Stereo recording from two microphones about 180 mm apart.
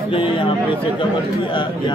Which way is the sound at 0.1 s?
30° left (ahead or behind).